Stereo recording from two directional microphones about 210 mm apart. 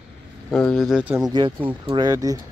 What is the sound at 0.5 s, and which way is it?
Speech, centre (ahead or behind).